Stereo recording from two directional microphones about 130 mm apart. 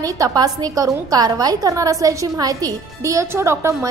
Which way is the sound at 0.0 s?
25° right (ahead or behind).